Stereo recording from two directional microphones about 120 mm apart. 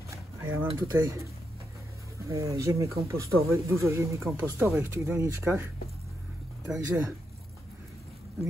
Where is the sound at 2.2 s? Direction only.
25° right (ahead or behind).